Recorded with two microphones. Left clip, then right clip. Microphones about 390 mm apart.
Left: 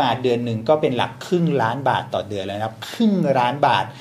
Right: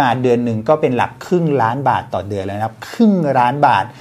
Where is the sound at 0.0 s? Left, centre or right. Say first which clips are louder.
Right 5 dB; right.